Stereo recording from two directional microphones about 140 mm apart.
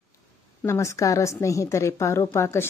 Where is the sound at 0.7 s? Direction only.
20° left (ahead or behind).